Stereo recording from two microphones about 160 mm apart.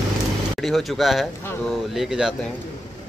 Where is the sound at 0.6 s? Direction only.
Centre (ahead or behind).